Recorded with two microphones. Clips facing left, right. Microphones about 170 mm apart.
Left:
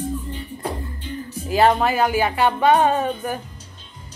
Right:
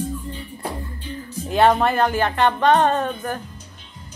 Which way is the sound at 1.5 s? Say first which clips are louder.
Even; centre (ahead or behind).